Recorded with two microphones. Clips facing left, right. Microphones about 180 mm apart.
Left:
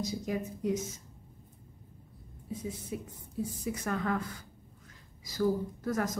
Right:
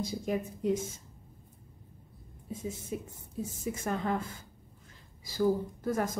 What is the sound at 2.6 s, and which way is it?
Speech, 25° right (ahead or behind).